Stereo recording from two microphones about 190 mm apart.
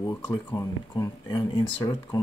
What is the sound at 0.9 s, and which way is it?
Speech, 25° left (ahead or behind).